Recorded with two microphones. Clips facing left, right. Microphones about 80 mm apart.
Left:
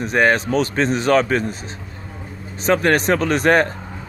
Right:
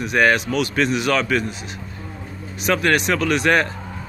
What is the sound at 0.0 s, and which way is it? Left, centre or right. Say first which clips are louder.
Speech: left 1 dB; left.